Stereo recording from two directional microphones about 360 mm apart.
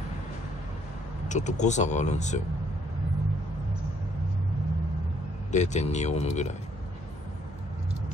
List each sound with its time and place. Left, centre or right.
1.3 s speech: centre
5.5 s speech: centre